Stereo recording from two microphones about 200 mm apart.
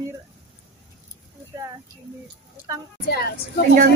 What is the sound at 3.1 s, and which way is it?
Speech, 50° left (ahead or behind).